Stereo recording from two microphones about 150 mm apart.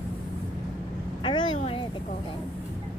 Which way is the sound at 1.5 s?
40° left (ahead or behind).